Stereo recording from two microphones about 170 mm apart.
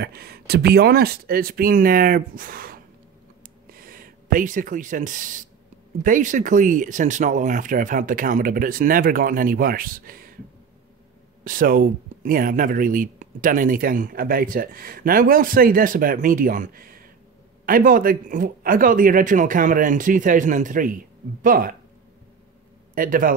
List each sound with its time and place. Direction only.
0.0 s speech: 65° right (ahead or behind)
11.4 s speech: 55° right (ahead or behind)
22.9 s speech: 55° right (ahead or behind)